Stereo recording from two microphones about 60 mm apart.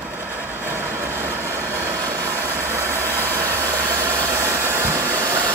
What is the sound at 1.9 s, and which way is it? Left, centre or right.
Vehicle, right.